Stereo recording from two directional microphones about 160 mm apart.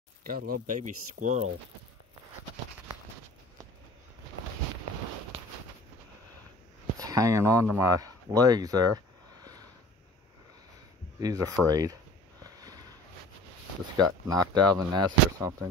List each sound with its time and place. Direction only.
0.2 s speech: 65° right (ahead or behind); by 1.5 s 50° right (ahead or behind)
7.0 s speech: 20° right (ahead or behind)
11.1 s speech: 20° right (ahead or behind)
13.9 s speech: 25° right (ahead or behind)